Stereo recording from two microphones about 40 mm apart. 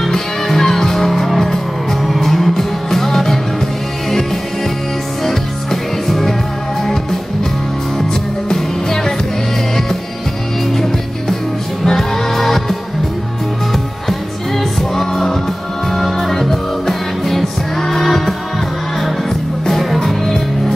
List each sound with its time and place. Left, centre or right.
0.0 s music: centre
5.2 s music: centre
10.7 s music: centre
14.6 s music: centre
19.7 s music: centre